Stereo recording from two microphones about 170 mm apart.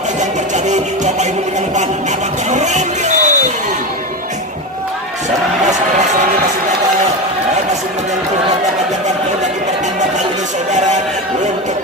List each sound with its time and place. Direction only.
2.5 s music: 45° right (ahead or behind)